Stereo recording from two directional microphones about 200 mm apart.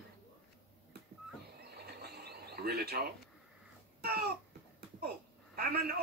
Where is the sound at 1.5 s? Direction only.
50° right (ahead or behind).